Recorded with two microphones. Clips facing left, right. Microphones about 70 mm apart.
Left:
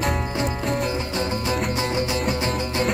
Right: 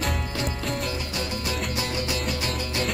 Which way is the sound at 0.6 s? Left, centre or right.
Centre.